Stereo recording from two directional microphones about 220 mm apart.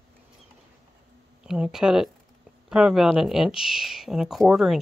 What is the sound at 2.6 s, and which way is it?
Speech, 5° right (ahead or behind).